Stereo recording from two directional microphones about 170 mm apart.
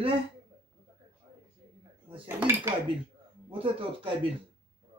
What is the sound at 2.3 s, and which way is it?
Speech, 15° right (ahead or behind).